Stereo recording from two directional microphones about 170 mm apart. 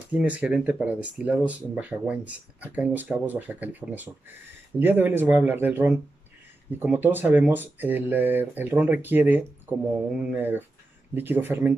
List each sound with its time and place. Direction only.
0.1 s speech: 10° right (ahead or behind)